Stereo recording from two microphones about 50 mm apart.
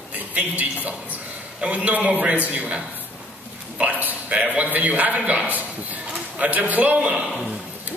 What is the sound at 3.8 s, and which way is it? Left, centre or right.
A man's voice, right.